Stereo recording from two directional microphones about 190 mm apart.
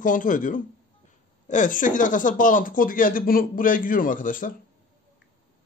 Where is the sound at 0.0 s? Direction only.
45° left (ahead or behind).